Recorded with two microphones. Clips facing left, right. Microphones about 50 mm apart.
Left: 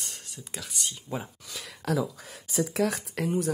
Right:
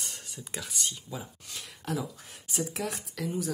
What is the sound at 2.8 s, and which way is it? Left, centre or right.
Speech, left.